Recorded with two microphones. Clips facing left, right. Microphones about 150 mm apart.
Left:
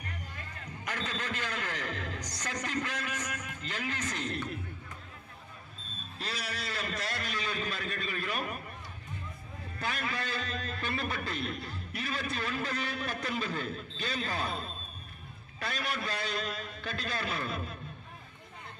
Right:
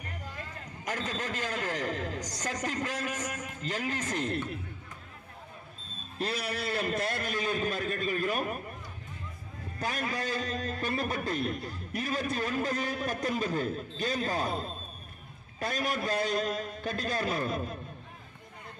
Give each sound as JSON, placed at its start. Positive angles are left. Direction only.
{"t": 0.8, "sound": "a man's voice", "side_deg": -45}
{"t": 6.1, "sound": "a man's voice", "side_deg": -55}
{"t": 9.8, "sound": "a man's voice", "side_deg": -45}
{"t": 15.6, "sound": "a man's voice", "side_deg": -45}